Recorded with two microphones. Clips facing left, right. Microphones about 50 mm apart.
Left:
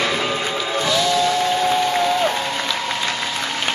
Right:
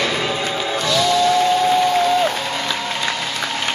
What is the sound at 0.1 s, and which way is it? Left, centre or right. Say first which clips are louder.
Music: even; centre.